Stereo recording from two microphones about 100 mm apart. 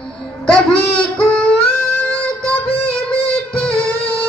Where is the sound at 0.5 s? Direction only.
10° left (ahead or behind).